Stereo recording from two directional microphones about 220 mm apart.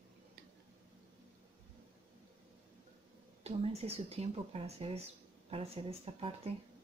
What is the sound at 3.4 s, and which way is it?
Speech, 30° right (ahead or behind).